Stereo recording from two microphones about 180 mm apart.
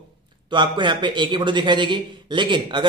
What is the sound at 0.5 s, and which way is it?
A man's voice, 25° right (ahead or behind).